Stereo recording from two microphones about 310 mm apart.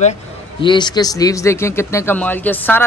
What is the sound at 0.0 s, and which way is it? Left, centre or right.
A man's voice, centre.